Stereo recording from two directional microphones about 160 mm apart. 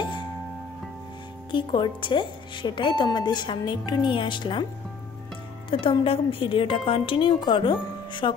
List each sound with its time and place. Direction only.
1.5 s speech: 30° left (ahead or behind)
5.7 s a woman's voice: 35° left (ahead or behind)